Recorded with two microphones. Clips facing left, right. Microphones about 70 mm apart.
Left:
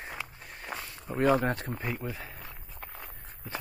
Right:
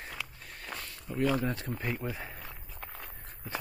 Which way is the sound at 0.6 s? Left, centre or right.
Centre.